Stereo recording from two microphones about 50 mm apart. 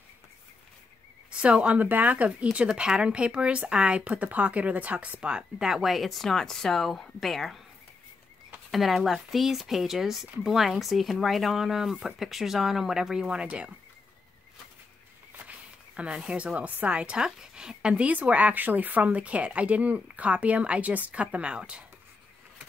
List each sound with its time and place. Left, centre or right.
1.3 s a woman's voice: right
2.7 s a woman's voice: centre
5.6 s speech: centre
8.7 s speech: centre
15.3 s a sound: right
16.2 s speech: centre
16.5 s a woman's voice: right